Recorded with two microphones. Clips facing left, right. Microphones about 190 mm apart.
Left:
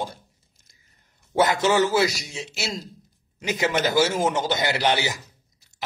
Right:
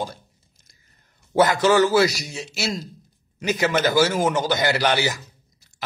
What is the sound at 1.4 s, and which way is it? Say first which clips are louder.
A man's voice: right 3 dB; 25° left (ahead or behind).